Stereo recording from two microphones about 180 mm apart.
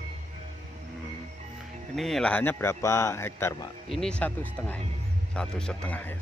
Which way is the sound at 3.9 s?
5° left (ahead or behind).